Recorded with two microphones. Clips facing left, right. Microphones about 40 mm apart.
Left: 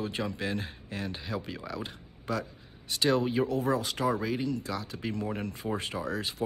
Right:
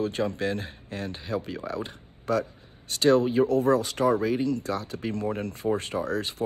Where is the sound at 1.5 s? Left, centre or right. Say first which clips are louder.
Right 5 dB; right.